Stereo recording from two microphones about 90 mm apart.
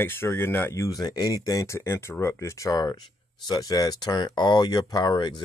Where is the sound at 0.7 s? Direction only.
40° left (ahead or behind).